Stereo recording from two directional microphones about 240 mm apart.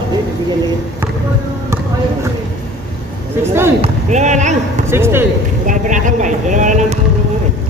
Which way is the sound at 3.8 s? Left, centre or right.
Right.